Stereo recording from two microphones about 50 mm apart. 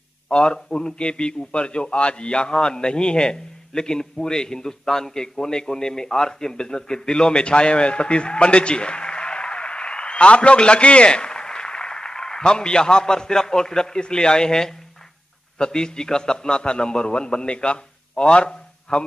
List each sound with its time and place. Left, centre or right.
0.3 s a man's voice: centre